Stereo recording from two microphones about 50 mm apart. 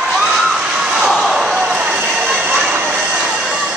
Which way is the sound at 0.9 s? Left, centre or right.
Centre.